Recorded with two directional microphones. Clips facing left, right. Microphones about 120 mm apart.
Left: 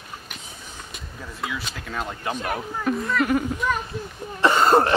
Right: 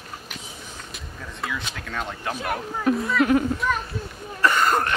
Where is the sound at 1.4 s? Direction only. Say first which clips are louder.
Even; 5° left (ahead or behind).